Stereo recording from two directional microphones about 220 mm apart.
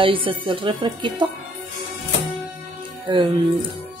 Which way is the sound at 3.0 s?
20° right (ahead or behind).